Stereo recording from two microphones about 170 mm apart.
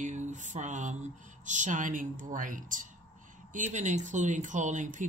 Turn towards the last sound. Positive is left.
turn(degrees=-50)  # may be behind; listen again after turning